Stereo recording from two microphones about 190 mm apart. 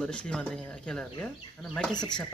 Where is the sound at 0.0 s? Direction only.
5° left (ahead or behind).